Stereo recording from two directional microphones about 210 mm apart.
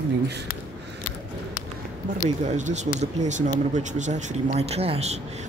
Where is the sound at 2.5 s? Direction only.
35° right (ahead or behind).